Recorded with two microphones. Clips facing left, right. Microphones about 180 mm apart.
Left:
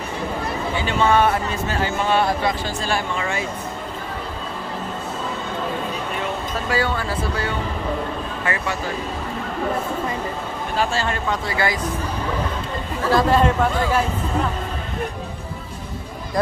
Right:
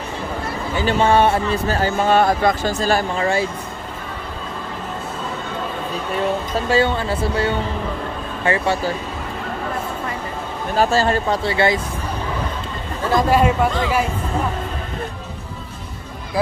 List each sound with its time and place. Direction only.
0.7 s speech: 35° right (ahead or behind)
6.7 s speech: 25° right (ahead or behind)
10.8 s speech: 40° right (ahead or behind)
13.1 s speech: 10° right (ahead or behind)